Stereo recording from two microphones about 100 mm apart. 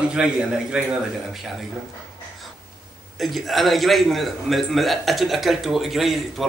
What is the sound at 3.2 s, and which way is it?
A man's voice, centre (ahead or behind).